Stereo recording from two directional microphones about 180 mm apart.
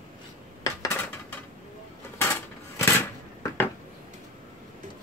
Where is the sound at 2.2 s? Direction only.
15° left (ahead or behind).